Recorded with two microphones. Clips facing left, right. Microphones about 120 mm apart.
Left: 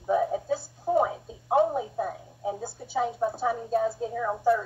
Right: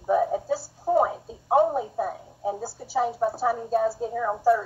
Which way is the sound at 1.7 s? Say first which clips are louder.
Right 2 dB; 5° right (ahead or behind).